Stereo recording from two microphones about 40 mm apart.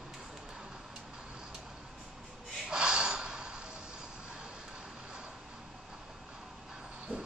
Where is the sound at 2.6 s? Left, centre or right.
Centre.